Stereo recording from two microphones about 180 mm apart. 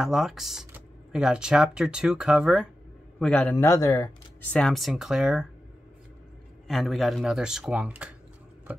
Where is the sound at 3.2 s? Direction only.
5° left (ahead or behind).